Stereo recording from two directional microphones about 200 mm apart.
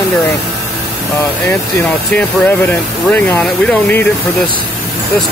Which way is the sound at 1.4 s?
10° left (ahead or behind).